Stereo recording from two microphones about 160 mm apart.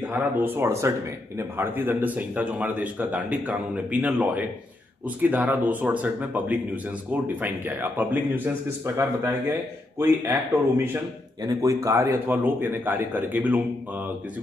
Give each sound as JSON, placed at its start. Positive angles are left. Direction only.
{"t": 0.0, "sound": "speech", "side_deg": -10}
{"t": 11.4, "sound": "speech", "side_deg": -20}